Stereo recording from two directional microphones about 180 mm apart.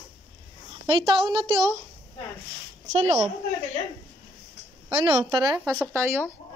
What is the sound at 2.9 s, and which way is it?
Speech, 35° right (ahead or behind).